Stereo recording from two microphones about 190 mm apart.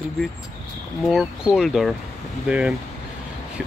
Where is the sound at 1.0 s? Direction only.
Centre (ahead or behind).